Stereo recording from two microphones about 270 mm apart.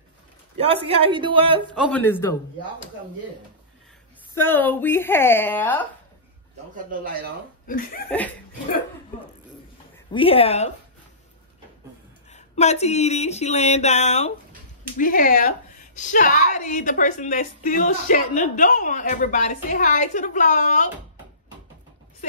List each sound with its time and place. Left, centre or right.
0.6 s a woman's voice: right
1.7 s a man's voice: centre
4.4 s a woman's voice: centre
7.6 s speech: left
10.1 s a woman's voice: left
12.3 s a woman's voice: left